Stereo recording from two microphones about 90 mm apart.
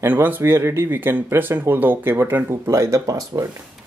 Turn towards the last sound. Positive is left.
turn(degrees=-35)  # may be behind; listen again after turning